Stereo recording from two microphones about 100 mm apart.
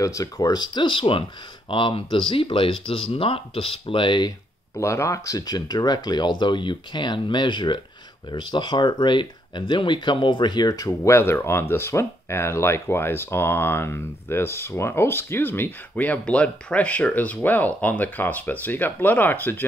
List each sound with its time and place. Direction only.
0.0 s speech: 35° left (ahead or behind); by 4.3 s 55° left (ahead or behind)
4.7 s speech: 30° left (ahead or behind)